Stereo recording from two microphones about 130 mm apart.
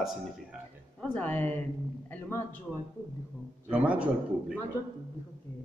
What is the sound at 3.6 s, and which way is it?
Speech, 10° right (ahead or behind).